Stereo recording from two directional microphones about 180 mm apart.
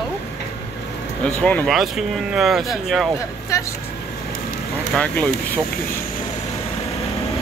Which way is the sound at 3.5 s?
15° left (ahead or behind).